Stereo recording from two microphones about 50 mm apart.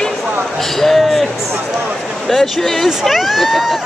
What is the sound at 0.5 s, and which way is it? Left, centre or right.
Speech, centre.